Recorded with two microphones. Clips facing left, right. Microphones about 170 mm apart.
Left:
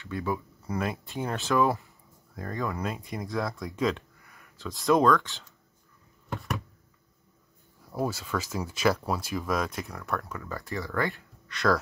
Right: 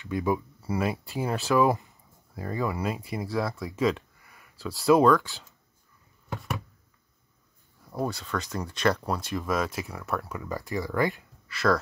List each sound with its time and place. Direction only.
0.0 s speech: 15° right (ahead or behind)
0.7 s speech: 5° right (ahead or behind)
6.3 s a sound: centre (ahead or behind)
7.9 s speech: 5° left (ahead or behind); by 11.2 s 15° right (ahead or behind)
11.4 s speech: centre (ahead or behind)